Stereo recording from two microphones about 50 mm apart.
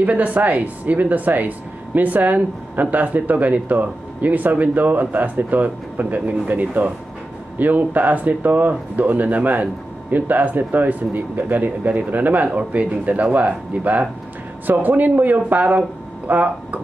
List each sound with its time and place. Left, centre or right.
0.0 s speech: right